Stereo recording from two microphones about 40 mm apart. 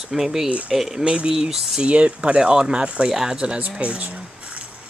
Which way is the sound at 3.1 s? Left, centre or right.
Centre.